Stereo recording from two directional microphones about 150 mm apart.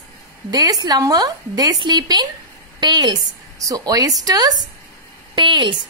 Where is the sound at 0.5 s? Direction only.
25° right (ahead or behind).